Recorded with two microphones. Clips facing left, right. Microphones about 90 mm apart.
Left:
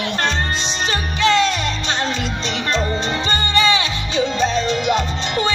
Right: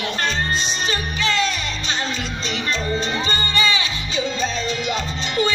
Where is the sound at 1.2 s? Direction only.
65° left (ahead or behind).